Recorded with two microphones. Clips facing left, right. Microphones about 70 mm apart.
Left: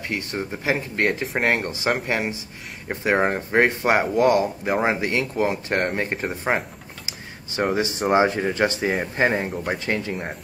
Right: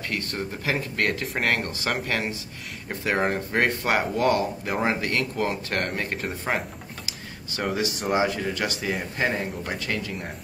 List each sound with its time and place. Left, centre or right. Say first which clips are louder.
0.1 s speech: left 3 dB; centre